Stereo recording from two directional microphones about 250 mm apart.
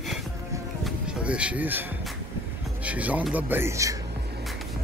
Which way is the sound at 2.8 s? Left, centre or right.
Centre.